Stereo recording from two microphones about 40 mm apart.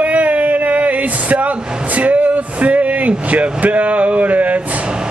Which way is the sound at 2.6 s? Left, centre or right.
Right.